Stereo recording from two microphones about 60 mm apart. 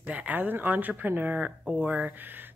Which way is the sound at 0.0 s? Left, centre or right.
Right.